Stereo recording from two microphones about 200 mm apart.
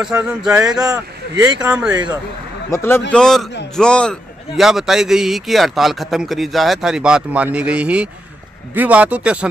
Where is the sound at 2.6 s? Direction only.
15° left (ahead or behind).